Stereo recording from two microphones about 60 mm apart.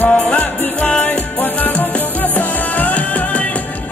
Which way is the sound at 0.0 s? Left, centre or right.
Left.